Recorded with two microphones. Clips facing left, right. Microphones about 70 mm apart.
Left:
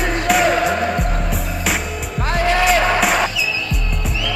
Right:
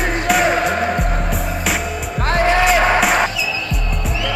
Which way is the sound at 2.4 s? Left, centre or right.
Centre.